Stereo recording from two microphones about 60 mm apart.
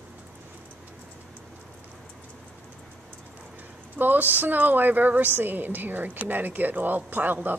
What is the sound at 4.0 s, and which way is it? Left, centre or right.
A woman's voice, right.